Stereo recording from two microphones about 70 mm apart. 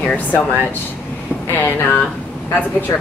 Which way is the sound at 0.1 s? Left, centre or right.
Left.